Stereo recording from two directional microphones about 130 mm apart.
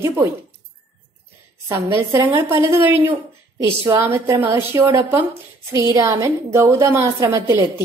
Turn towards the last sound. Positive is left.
turn(degrees=-25)  # may be behind; listen again after turning